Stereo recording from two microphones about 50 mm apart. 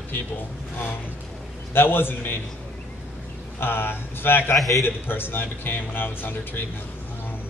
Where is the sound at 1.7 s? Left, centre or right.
Left.